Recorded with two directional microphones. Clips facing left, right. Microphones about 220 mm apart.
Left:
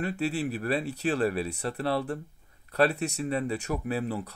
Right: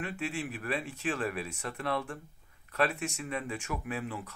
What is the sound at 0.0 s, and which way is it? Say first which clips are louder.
Speech: left 7 dB; 40° left (ahead or behind).